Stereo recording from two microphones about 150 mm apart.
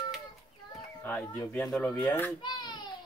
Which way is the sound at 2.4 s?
30° left (ahead or behind).